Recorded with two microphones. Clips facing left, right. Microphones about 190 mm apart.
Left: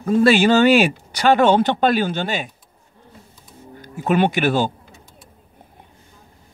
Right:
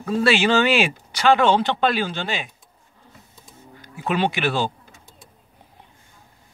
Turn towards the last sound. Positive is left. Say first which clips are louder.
# left 4 dB
turn(degrees=45)  # may be behind; listen again after turning